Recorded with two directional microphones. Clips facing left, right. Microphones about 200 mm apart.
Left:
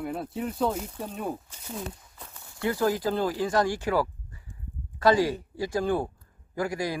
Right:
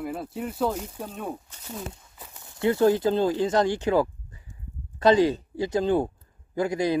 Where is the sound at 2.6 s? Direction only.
25° right (ahead or behind).